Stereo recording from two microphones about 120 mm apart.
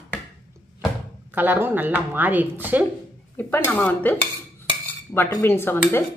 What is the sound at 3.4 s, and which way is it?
Speech, 15° left (ahead or behind).